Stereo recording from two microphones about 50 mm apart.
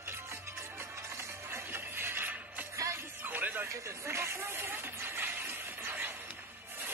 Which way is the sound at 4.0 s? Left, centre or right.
Right.